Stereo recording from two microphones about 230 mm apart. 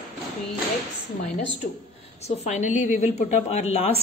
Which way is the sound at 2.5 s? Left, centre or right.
Left.